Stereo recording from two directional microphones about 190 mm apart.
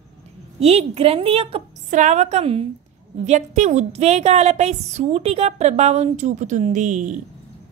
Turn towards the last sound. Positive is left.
turn(degrees=-40)  # may be behind; listen again after turning